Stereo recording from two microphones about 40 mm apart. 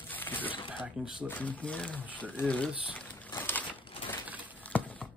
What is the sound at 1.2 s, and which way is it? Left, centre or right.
Speech, left.